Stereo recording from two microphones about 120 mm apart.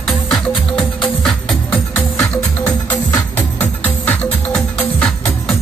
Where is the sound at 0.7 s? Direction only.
5° left (ahead or behind).